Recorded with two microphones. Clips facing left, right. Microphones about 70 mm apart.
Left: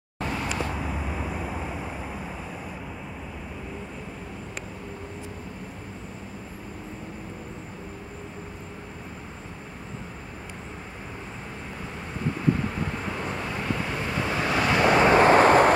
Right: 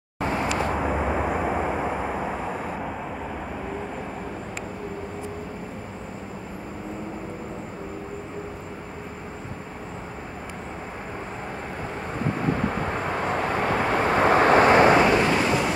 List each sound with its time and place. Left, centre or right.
0.2 s vehicle: right
0.7 s vehicle: right
12.6 s vehicle: right
15.1 s vehicle: left